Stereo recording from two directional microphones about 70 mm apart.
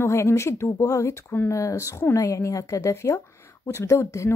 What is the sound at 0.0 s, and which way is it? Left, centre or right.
Speech, left.